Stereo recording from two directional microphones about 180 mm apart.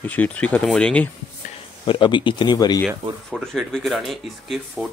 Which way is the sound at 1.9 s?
25° left (ahead or behind).